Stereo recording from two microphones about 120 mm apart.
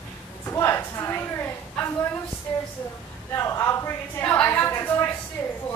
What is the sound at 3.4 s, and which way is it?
A woman's voice, 25° left (ahead or behind).